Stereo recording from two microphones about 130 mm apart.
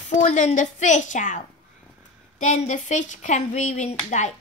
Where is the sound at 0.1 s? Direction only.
65° left (ahead or behind).